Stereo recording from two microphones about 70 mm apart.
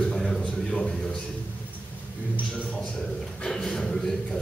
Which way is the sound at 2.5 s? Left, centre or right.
Centre.